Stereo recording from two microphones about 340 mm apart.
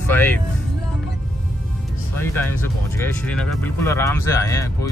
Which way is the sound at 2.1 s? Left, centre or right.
Centre.